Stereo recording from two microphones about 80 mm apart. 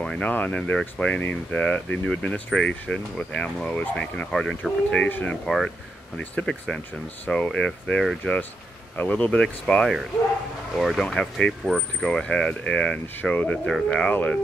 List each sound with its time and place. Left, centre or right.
0.0 s a sound: centre
0.3 s speech: centre
13.7 s speech: centre